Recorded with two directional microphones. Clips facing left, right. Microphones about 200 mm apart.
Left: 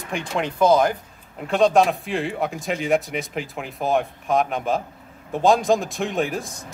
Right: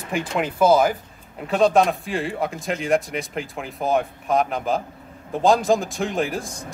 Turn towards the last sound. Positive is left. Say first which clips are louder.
# even
turn(degrees=0)  # may be behind; listen again after turning